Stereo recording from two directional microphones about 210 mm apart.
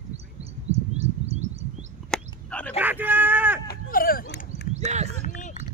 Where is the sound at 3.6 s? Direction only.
45° left (ahead or behind).